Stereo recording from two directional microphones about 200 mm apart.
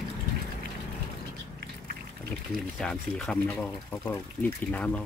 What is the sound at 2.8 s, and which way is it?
Speech, 5° left (ahead or behind).